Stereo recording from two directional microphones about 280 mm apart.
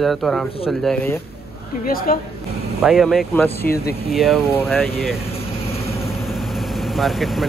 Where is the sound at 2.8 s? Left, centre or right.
Centre.